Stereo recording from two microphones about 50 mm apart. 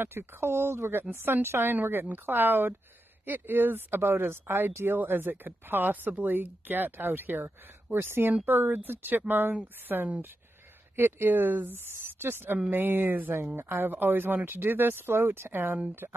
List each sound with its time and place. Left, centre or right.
0.0 s speech: right
4.8 s speech: right
16.0 s speech: right